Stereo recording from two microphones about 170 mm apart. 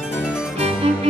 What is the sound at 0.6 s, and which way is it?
Music, 35° right (ahead or behind).